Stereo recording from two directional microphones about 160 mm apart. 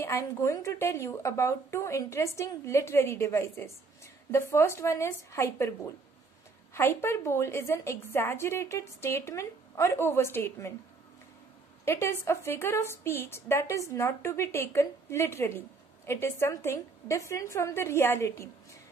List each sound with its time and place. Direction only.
0.0 s a woman's voice: 20° left (ahead or behind)
6.7 s a woman's voice: 15° left (ahead or behind)
11.8 s a woman's voice: 15° left (ahead or behind)